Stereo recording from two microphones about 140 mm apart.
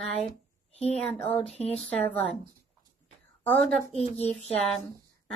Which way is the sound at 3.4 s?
15° left (ahead or behind).